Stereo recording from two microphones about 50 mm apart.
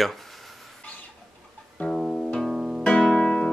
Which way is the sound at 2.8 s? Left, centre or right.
Left.